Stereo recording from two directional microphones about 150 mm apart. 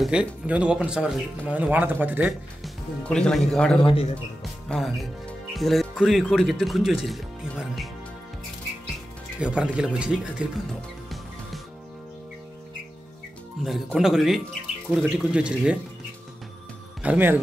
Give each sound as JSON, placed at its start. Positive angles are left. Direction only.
{"t": 0.0, "sound": "speech", "side_deg": -5}
{"t": 2.6, "sound": "speech", "side_deg": 5}
{"t": 3.8, "sound": "speech", "side_deg": 40}
{"t": 4.4, "sound": "speech", "side_deg": 0}
{"t": 9.4, "sound": "speech", "side_deg": -5}
{"t": 10.7, "sound": "music", "side_deg": 0}
{"t": 13.7, "sound": "speech", "side_deg": 0}
{"t": 17.0, "sound": "speech", "side_deg": -10}